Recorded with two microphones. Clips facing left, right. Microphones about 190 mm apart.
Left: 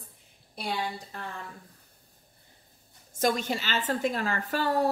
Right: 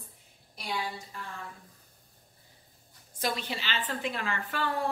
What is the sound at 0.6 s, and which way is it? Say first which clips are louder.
Speech: left 3 dB; 55° left (ahead or behind).